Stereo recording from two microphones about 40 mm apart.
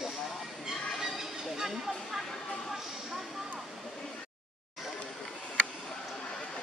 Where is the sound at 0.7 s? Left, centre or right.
Centre.